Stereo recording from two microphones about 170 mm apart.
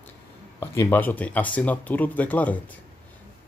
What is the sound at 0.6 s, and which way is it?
Speech, 15° left (ahead or behind).